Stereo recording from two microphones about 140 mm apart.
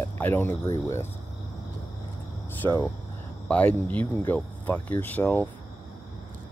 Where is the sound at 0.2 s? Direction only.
15° left (ahead or behind).